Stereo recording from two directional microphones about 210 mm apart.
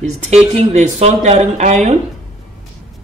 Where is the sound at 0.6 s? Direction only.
30° right (ahead or behind).